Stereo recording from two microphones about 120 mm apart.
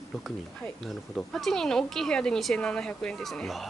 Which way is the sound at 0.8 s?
Centre (ahead or behind).